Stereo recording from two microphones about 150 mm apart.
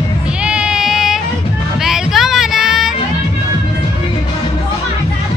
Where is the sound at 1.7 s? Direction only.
5° right (ahead or behind).